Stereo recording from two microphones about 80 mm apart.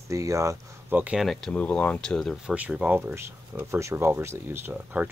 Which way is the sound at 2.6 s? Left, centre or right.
Centre.